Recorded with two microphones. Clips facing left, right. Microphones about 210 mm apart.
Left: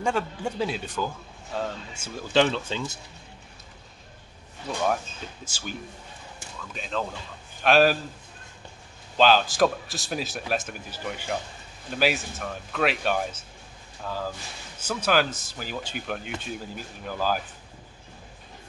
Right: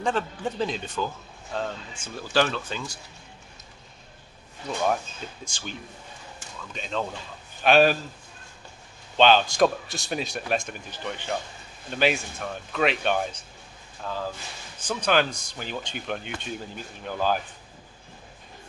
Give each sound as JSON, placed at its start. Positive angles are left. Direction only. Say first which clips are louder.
{"t": 0.0, "sound": "a man's voice", "louder": "even", "side_deg": 10}
{"t": 2.3, "sound": "speech", "louder": "left 2 dB", "side_deg": 25}
{"t": 5.4, "sound": "a man's voice", "louder": "left 1 dB", "side_deg": 5}
{"t": 9.1, "sound": "a man's voice", "louder": "right 1 dB", "side_deg": 5}